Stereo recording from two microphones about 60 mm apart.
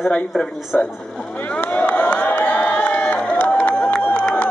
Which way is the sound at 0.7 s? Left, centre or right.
Centre.